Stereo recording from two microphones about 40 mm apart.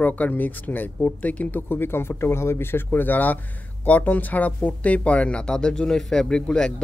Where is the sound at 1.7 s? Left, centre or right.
Left.